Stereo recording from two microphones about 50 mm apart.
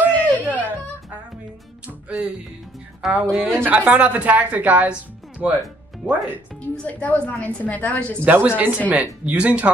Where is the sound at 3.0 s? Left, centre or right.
Centre.